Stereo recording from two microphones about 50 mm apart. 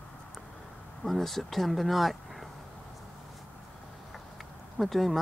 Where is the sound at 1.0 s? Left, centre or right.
Centre.